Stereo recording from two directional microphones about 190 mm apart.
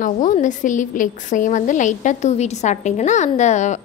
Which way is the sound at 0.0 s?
40° left (ahead or behind).